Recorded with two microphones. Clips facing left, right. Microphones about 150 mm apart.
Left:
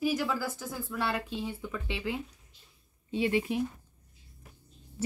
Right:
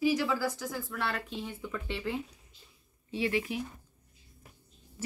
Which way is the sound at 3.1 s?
25° left (ahead or behind).